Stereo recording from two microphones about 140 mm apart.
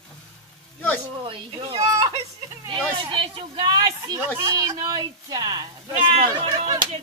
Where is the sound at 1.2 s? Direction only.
40° right (ahead or behind).